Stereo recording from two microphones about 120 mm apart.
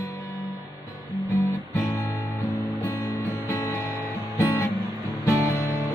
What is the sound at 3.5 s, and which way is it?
Music, 25° left (ahead or behind).